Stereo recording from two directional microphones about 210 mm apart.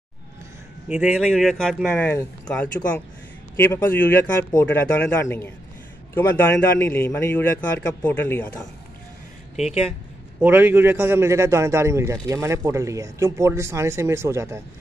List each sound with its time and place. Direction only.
0.8 s a man's voice: 5° right (ahead or behind)
10.4 s speech: 10° right (ahead or behind)